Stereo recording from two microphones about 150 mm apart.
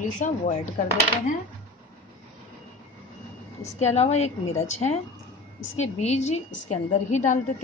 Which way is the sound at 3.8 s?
45° left (ahead or behind).